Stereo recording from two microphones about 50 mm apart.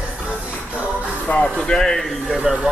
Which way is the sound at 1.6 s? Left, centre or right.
Centre.